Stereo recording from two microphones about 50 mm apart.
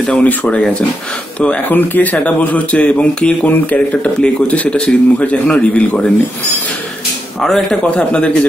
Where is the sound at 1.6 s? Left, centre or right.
Left.